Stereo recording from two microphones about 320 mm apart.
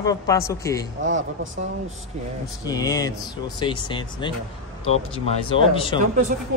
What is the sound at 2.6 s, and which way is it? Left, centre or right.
A man's voice, centre.